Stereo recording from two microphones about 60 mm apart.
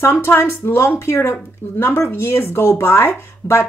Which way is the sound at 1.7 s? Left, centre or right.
Left.